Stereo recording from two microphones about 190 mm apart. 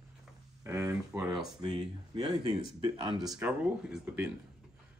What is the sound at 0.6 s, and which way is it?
Speech, 15° right (ahead or behind).